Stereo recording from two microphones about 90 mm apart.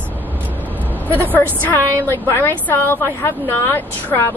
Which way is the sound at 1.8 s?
20° right (ahead or behind).